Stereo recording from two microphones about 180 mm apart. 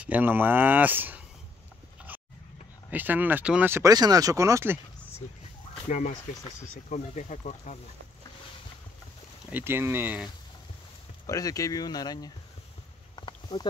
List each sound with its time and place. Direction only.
0.0 s speech: 10° right (ahead or behind)
2.9 s speech: 10° right (ahead or behind)
5.9 s speech: 45° left (ahead or behind)
6.1 s speech: 20° left (ahead or behind)
6.7 s speech: 45° left (ahead or behind)
9.5 s speech: 10° right (ahead or behind)
11.2 s speech: 20° left (ahead or behind)
13.1 s a sound: 25° left (ahead or behind)